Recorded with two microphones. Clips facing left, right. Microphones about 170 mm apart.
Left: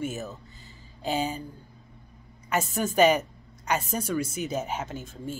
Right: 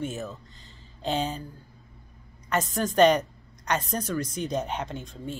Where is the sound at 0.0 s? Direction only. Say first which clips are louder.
Even; 5° left (ahead or behind).